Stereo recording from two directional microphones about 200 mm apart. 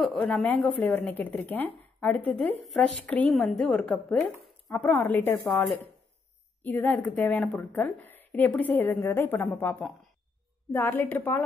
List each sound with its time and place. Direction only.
0.0 s a woman's voice: centre (ahead or behind)